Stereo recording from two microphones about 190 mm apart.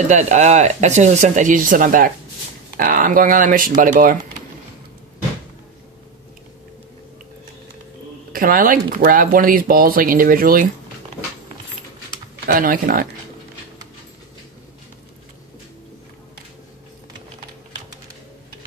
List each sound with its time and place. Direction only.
0.1 s speech: 35° right (ahead or behind)
8.3 s speech: 50° right (ahead or behind)
12.4 s speech: 45° right (ahead or behind)